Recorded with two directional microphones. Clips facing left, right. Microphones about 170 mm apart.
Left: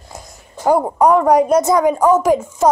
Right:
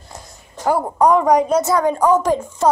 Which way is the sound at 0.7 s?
15° left (ahead or behind).